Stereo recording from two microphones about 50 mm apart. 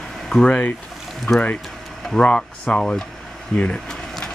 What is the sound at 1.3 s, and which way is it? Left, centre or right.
Speech, left.